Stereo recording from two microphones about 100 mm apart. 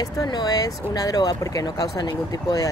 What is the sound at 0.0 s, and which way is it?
Speech, 45° left (ahead or behind).